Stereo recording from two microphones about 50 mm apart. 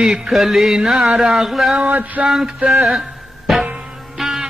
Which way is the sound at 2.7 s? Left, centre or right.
Centre.